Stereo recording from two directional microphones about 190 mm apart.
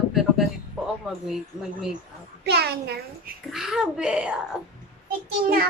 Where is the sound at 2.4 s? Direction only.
60° right (ahead or behind).